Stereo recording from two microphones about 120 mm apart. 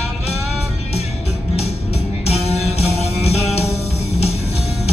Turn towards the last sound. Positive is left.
turn(degrees=60)  # may be behind; listen again after turning